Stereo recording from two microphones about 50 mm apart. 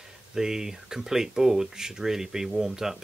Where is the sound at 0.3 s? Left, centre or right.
Centre.